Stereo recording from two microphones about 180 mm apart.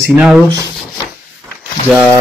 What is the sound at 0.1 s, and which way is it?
Speech, 5° right (ahead or behind).